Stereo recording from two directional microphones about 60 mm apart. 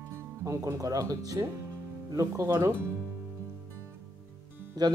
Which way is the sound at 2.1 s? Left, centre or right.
Right.